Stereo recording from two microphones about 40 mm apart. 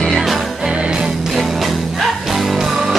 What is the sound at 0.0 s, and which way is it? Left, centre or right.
Music, centre.